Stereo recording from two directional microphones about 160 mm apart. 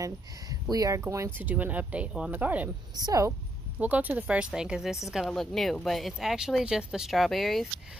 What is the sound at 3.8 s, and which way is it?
Speech, 10° right (ahead or behind).